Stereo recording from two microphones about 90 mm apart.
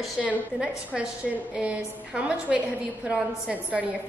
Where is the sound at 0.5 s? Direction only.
10° right (ahead or behind).